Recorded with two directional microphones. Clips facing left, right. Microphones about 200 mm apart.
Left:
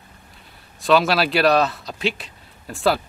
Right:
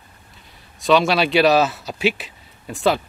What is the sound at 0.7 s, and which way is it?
A man's voice, centre (ahead or behind).